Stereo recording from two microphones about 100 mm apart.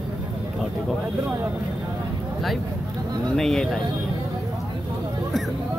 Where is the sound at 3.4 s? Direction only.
5° left (ahead or behind).